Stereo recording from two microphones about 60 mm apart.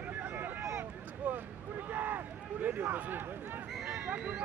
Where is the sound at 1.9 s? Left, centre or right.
Right.